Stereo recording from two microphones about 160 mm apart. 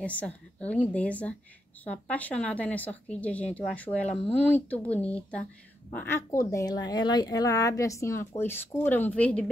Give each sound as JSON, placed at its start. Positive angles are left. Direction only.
{"t": 0.0, "sound": "a woman's voice", "side_deg": 10}